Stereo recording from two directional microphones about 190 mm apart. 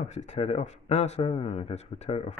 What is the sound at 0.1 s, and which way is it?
A man's voice, 35° left (ahead or behind).